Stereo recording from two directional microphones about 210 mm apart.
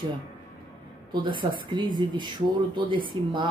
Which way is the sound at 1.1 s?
25° right (ahead or behind).